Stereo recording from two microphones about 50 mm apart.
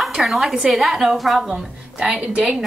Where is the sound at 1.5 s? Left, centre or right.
Centre.